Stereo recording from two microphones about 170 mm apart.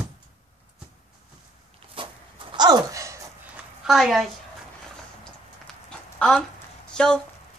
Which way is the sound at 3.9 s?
Centre (ahead or behind).